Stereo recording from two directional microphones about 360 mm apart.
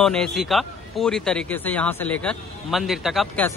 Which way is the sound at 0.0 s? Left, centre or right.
Centre.